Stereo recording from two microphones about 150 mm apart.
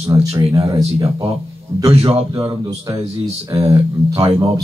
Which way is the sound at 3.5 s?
20° right (ahead or behind).